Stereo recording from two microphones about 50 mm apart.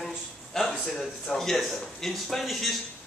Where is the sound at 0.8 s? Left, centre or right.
Centre.